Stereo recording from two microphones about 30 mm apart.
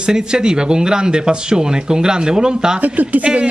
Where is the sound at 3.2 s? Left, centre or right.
Right.